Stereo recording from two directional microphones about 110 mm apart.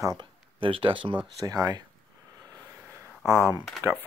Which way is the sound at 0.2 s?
55° right (ahead or behind).